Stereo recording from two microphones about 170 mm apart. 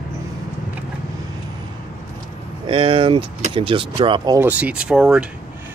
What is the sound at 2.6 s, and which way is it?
Speech, 30° right (ahead or behind).